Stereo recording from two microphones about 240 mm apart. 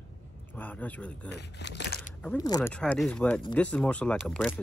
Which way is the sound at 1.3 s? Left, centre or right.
Left.